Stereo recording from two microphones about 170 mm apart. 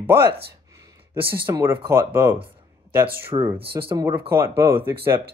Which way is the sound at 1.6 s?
15° right (ahead or behind).